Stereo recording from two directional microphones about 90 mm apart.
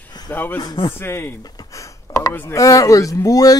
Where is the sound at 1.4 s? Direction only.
45° left (ahead or behind).